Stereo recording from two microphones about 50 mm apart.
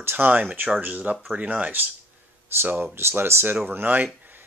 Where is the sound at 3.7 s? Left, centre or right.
Right.